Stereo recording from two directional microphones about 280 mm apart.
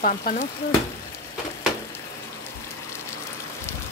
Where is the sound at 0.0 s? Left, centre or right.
Left.